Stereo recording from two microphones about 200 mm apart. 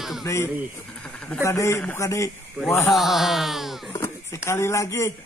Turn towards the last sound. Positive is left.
turn(degrees=15)  # may be behind; listen again after turning